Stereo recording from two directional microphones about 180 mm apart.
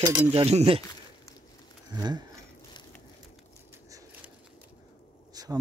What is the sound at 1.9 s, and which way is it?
Speech, 25° right (ahead or behind).